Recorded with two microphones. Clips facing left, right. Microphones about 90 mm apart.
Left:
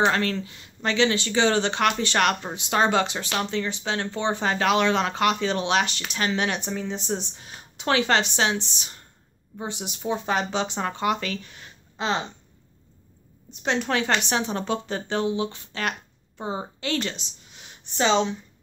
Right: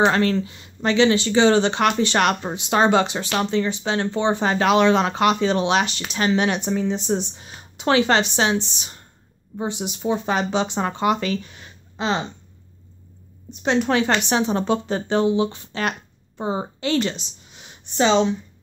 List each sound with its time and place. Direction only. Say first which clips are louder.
0.0 s speech: right 4 dB; 25° right (ahead or behind)
12.0 s speech: right 3 dB; 5° right (ahead or behind)
13.5 s a woman's voice: right 5 dB; 10° right (ahead or behind)
18.0 s speech: right 4 dB; 5° right (ahead or behind)